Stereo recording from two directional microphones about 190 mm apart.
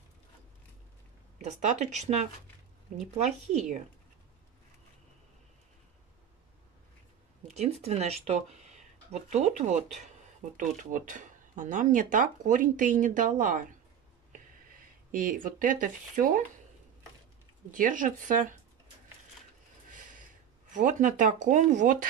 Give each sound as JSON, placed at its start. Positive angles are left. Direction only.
{"t": 1.4, "sound": "speech", "side_deg": -40}
{"t": 7.5, "sound": "speech", "side_deg": -35}
{"t": 15.0, "sound": "speech", "side_deg": -45}
{"t": 17.6, "sound": "speech", "side_deg": -45}
{"t": 20.7, "sound": "speech", "side_deg": -40}